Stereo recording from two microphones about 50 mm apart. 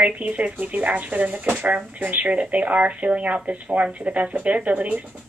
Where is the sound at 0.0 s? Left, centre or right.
Right.